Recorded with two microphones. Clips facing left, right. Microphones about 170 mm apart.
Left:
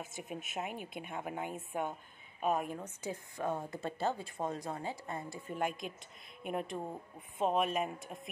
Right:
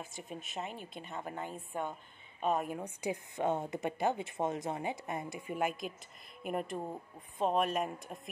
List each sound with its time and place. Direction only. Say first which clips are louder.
0.0 s a woman's voice: left 1 dB; 5° left (ahead or behind)
2.8 s speech: right 4 dB; 15° right (ahead or behind)
5.6 s speech: right 1 dB; 5° right (ahead or behind)